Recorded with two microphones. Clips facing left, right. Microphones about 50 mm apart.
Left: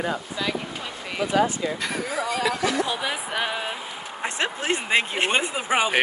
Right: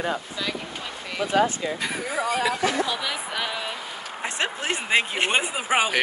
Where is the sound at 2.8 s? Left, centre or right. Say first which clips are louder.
Left 1 dB; left.